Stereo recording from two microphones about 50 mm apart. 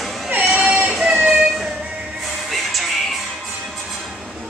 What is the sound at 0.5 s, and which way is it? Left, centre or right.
Child singing, centre.